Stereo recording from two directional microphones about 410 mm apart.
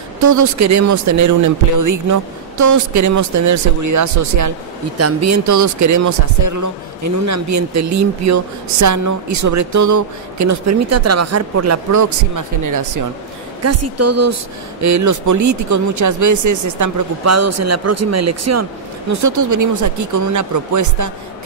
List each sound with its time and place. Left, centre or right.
0.2 s speech: right
13.7 s speech: right